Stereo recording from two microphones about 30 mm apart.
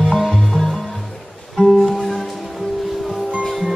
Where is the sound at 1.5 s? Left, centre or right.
Centre.